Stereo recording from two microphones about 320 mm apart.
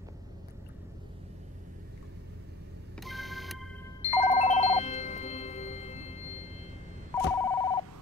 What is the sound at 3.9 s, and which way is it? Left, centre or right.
Telephone bell ringing, left.